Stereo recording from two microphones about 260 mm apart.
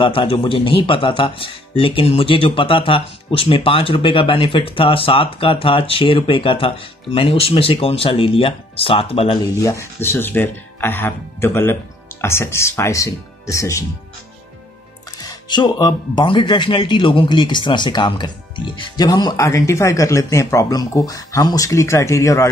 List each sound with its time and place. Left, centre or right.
0.0 s speech: centre
15.1 s speech: centre